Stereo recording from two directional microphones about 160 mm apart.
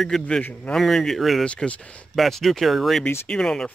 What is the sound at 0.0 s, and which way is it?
Speech, 5° left (ahead or behind).